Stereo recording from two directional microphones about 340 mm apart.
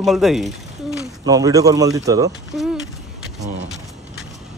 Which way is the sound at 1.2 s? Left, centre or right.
Centre.